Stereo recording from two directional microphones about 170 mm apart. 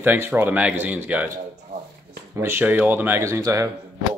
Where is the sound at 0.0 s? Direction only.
10° right (ahead or behind).